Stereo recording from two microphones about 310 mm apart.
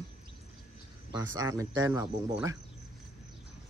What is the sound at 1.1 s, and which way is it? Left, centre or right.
Speech, centre.